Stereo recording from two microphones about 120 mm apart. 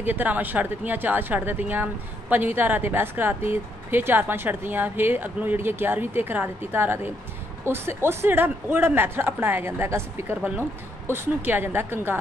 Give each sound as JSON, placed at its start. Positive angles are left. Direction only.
{"t": 0.0, "sound": "speech", "side_deg": -15}